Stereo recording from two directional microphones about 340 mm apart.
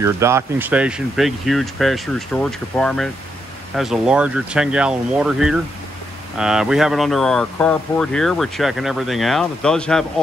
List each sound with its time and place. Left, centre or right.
0.0 s speech: centre